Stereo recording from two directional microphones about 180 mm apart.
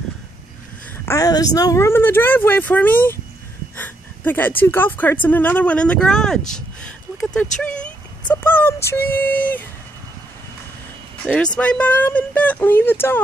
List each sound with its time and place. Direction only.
0.9 s speech: 15° left (ahead or behind)
6.5 s a sound: 5° left (ahead or behind)
8.8 s speech: 10° left (ahead or behind)
11.2 s speech: 5° left (ahead or behind)